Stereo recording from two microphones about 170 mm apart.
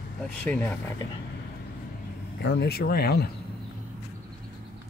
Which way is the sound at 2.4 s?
80° left.